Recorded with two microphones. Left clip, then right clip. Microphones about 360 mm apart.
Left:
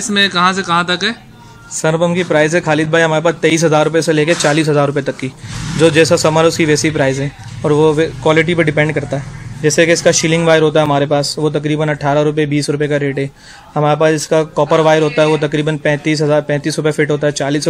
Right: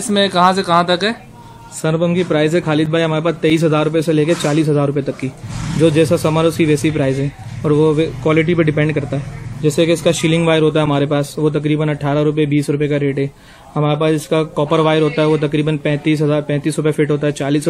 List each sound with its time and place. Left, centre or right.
0.1 s speech: centre
1.8 s speech: centre